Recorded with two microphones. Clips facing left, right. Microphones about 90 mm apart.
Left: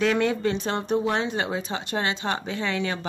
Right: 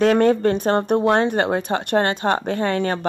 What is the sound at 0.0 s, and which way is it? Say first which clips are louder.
Speech: right 7 dB; 45° right (ahead or behind).